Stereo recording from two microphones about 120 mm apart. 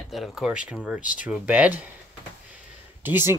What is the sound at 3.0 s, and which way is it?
Speech, 15° right (ahead or behind).